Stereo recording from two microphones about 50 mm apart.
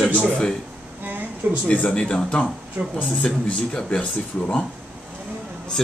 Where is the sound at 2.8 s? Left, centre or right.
Centre.